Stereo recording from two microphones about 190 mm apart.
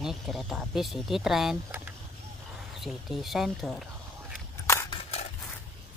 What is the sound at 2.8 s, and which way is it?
Speech, centre (ahead or behind).